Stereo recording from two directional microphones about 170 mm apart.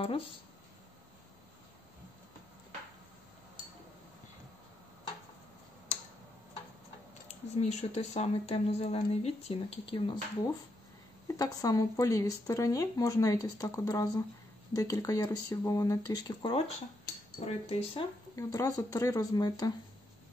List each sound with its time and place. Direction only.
7.2 s speech: 40° left (ahead or behind); by 16.5 s 20° left (ahead or behind)
17.5 s speech: 35° left (ahead or behind)
18.3 s speech: 20° left (ahead or behind)